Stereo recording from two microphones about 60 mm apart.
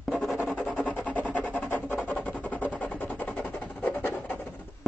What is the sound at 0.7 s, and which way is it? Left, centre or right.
Rub, left.